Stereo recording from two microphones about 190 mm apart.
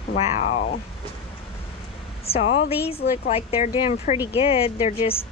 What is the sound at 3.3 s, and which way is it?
Speech, 30° left (ahead or behind).